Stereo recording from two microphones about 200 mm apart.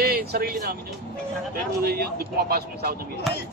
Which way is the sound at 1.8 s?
50° right (ahead or behind).